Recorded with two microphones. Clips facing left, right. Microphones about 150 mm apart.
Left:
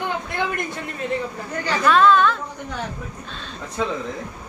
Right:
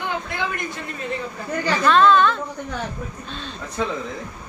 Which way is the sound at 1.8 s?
5° left (ahead or behind).